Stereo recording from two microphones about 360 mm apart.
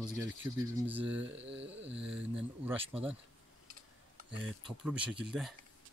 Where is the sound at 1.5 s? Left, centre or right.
Right.